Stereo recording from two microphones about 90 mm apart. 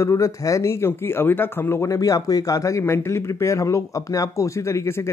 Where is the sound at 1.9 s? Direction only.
40° left (ahead or behind).